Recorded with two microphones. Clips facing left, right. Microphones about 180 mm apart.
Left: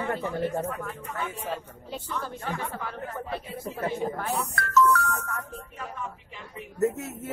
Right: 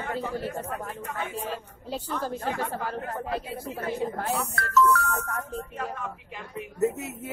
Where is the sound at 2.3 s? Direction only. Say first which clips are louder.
Right 3 dB; 40° right (ahead or behind).